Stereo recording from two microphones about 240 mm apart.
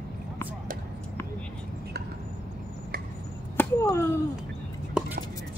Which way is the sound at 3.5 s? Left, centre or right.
Centre.